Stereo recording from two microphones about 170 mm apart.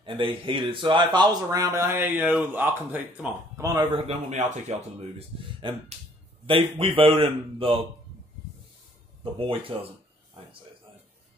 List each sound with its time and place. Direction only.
0.0 s speech: 30° right (ahead or behind); by 3.6 s 10° right (ahead or behind)
3.6 s speech: 20° right (ahead or behind)
4.1 s speech: 45° right (ahead or behind)
5.6 s a man's voice: 30° right (ahead or behind)
9.2 s a man's voice: 30° right (ahead or behind)